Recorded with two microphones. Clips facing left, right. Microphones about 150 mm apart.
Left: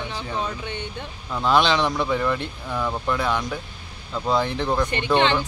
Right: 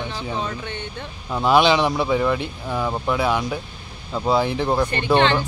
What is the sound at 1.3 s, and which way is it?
A man's voice, 15° right (ahead or behind).